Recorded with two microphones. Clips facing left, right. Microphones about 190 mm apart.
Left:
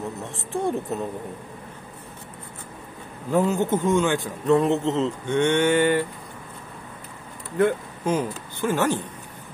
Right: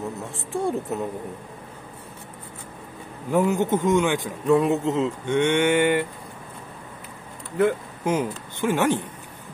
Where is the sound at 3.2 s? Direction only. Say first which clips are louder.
Even; 15° right (ahead or behind).